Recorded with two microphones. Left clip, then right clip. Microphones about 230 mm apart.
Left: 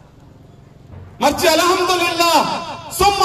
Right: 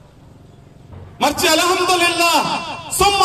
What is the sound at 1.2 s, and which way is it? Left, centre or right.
A man's voice, right.